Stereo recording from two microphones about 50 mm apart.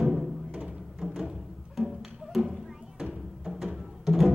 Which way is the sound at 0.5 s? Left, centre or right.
Right.